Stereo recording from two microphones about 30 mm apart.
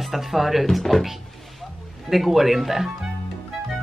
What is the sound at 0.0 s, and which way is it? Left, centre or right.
Speech, centre.